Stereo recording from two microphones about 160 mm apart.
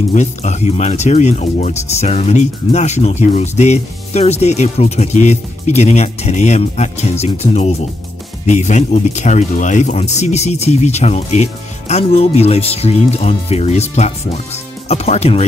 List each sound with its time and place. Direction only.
0.1 s speech: 45° left (ahead or behind)